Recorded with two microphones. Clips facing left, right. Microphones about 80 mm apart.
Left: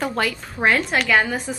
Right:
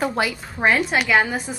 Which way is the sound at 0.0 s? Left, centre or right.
Centre.